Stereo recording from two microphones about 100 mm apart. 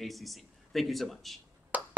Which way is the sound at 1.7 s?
15° right (ahead or behind).